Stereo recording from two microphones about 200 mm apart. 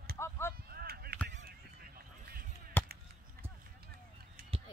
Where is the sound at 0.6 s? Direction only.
50° right (ahead or behind).